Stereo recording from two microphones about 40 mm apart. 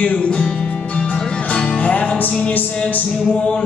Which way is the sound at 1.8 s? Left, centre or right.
Left.